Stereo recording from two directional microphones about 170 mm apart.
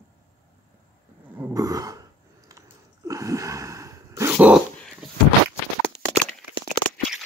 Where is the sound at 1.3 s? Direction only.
15° right (ahead or behind).